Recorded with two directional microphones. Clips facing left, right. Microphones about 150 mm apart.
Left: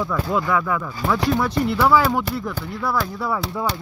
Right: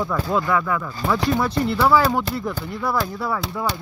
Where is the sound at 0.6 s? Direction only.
5° left (ahead or behind).